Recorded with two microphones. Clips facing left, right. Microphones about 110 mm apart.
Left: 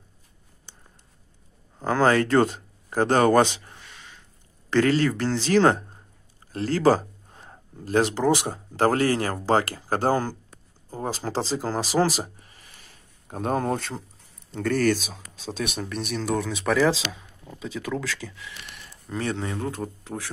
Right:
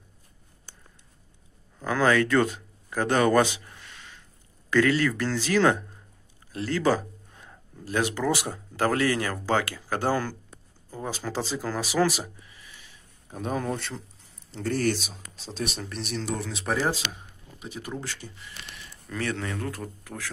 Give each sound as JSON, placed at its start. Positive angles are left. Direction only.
{"t": 1.8, "sound": "speech", "side_deg": 30}
{"t": 14.5, "sound": "speech", "side_deg": 50}
{"t": 19.0, "sound": "speech", "side_deg": 25}